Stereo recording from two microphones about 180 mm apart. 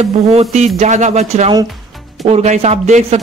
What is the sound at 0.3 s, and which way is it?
Speech, 35° right (ahead or behind).